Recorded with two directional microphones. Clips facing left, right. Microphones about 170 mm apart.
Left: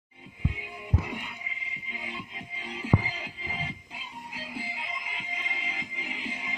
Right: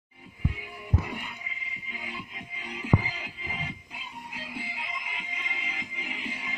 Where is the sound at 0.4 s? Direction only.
20° left (ahead or behind).